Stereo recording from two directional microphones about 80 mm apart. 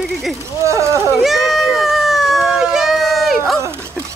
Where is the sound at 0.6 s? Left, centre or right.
Right.